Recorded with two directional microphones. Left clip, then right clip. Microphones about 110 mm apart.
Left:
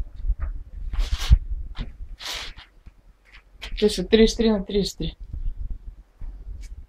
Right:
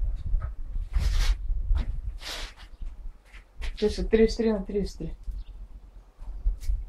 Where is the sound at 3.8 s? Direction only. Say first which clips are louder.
Left 5 dB; 15° left (ahead or behind).